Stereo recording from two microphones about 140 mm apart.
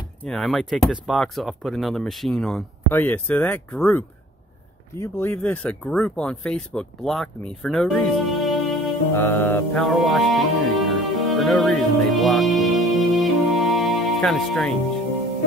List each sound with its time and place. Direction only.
0.2 s speech: centre (ahead or behind)
2.9 s speech: 15° left (ahead or behind)
5.0 s speech: 15° left (ahead or behind); by 8.5 s centre (ahead or behind)
9.1 s speech: 15° left (ahead or behind)
9.8 s music: centre (ahead or behind)